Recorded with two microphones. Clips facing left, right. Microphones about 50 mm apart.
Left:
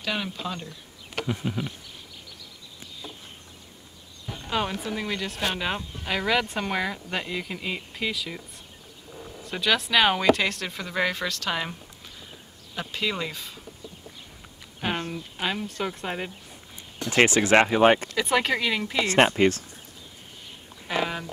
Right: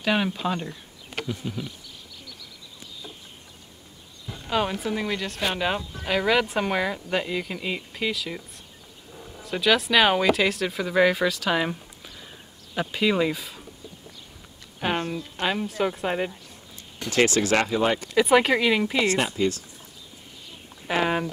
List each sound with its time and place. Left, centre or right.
0.0 s speech: centre
1.2 s speech: left
4.5 s speech: centre
9.5 s speech: centre
12.7 s speech: centre
14.8 s a sound: centre
15.4 s speech: centre
17.1 s speech: left
18.1 s speech: centre
19.1 s speech: left
20.8 s a sound: centre